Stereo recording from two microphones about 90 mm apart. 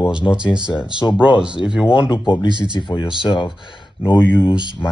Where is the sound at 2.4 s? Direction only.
60° right (ahead or behind).